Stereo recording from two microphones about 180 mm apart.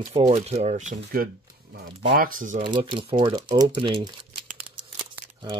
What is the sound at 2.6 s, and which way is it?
Speech, 25° right (ahead or behind).